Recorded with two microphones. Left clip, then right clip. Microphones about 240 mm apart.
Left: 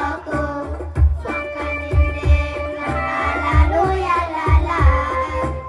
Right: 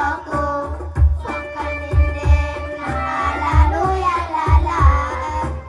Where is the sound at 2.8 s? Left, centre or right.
Centre.